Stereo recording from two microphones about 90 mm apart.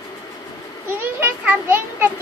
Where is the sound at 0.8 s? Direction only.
25° right (ahead or behind).